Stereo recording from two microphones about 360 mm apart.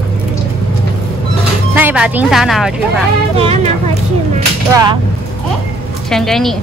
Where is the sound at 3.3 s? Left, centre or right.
Centre.